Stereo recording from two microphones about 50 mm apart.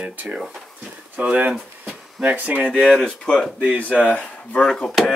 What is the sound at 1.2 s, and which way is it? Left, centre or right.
Speech, right.